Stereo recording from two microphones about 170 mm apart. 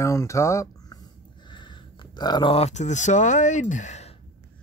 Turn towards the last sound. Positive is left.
turn(degrees=45)  # may be behind; listen again after turning